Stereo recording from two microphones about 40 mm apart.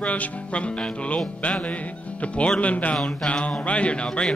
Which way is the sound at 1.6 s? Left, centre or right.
Left.